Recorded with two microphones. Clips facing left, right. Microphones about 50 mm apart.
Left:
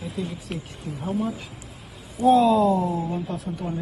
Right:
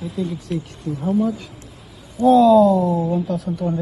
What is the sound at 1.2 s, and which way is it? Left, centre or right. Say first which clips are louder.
Speech: right 7 dB; centre.